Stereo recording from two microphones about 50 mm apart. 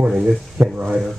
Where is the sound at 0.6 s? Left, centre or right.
Right.